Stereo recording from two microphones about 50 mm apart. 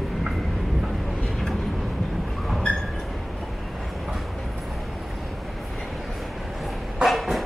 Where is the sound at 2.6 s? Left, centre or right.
Centre.